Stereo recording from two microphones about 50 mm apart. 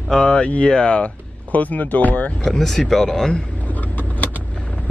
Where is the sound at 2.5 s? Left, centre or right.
Centre.